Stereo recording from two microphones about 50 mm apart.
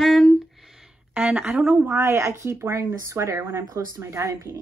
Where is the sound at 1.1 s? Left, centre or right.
Right.